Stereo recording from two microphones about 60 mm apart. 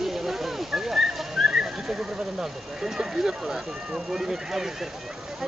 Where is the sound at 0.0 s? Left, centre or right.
Centre.